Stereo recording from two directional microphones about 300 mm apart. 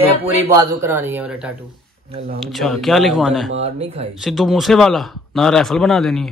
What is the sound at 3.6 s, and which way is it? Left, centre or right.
Speech, right.